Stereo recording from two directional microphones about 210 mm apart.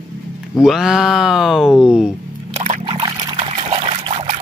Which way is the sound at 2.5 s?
35° right (ahead or behind).